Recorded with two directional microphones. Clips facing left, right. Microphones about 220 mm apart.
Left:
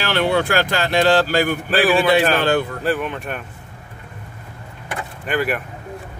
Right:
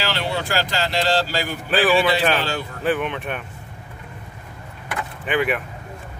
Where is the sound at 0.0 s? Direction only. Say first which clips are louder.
Left 6 dB; 55° left (ahead or behind).